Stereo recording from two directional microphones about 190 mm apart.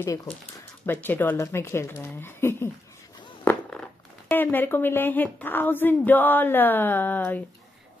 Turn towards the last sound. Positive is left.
turn(degrees=10)  # may be behind; listen again after turning